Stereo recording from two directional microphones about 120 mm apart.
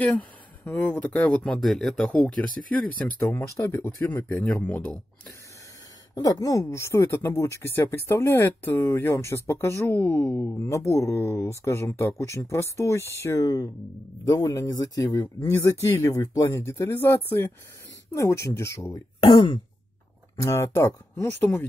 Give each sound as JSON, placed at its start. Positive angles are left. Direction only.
{"t": 0.0, "sound": "speech", "side_deg": 10}
{"t": 3.2, "sound": "speech", "side_deg": 20}
{"t": 6.2, "sound": "speech", "side_deg": 30}
{"t": 15.4, "sound": "speech", "side_deg": 25}
{"t": 19.1, "sound": "speech", "side_deg": 40}
{"t": 20.3, "sound": "speech", "side_deg": 25}